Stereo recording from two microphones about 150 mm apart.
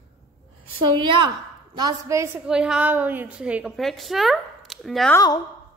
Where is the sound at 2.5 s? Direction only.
5° right (ahead or behind).